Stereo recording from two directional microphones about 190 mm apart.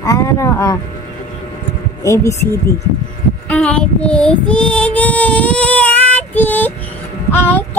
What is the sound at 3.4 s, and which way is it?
Child singing, 5° left (ahead or behind).